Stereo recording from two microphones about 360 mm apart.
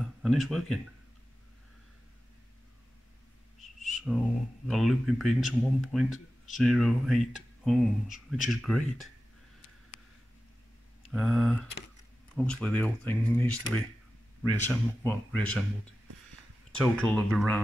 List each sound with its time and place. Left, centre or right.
0.2 s speech: centre
3.5 s owl: centre
4.6 s speech: centre
11.0 s a sound: centre
12.4 s speech: centre
16.7 s speech: centre